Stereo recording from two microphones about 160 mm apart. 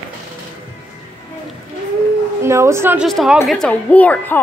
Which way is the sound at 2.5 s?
15° right (ahead or behind).